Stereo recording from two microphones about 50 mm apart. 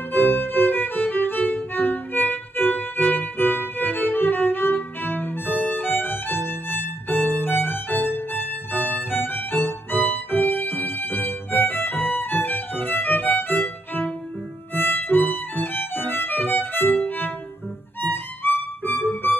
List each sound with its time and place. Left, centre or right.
0.1 s violin: left